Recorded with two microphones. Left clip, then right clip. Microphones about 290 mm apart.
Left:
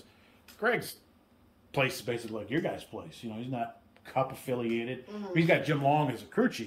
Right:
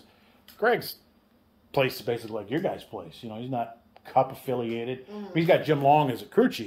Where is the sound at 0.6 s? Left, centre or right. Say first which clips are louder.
Right 5 dB; centre.